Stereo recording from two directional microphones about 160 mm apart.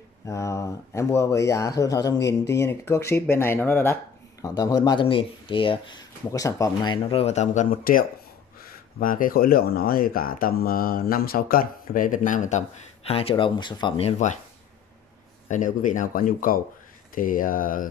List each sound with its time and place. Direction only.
0.3 s speech: 20° left (ahead or behind); by 14.4 s 45° left (ahead or behind)
15.4 s speech: 55° left (ahead or behind)